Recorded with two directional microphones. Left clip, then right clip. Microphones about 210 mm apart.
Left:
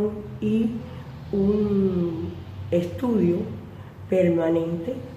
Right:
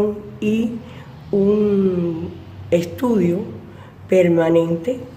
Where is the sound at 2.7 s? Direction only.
50° right (ahead or behind).